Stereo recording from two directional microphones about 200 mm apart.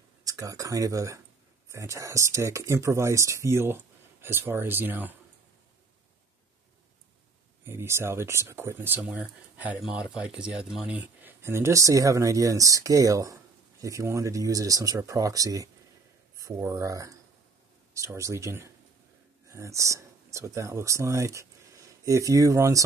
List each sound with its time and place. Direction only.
0.2 s speech: 15° right (ahead or behind)
7.6 s speech: 15° right (ahead or behind)